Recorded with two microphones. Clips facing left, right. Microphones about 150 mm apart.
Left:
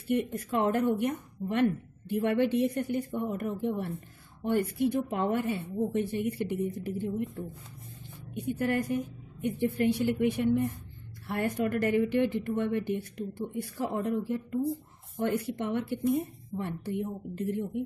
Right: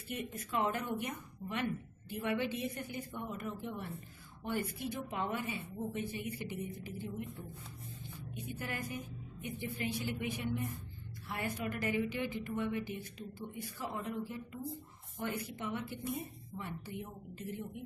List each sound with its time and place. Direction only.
0.3 s a woman's voice: 55° left (ahead or behind)